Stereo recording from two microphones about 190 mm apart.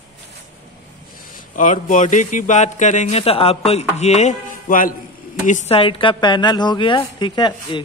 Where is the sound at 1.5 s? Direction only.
40° left (ahead or behind).